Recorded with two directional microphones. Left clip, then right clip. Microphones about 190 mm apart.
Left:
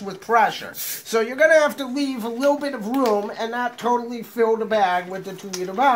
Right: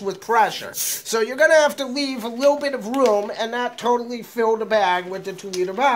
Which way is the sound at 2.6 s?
25° right (ahead or behind).